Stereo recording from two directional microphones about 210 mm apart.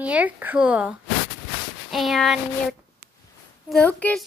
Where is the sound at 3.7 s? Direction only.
5° left (ahead or behind).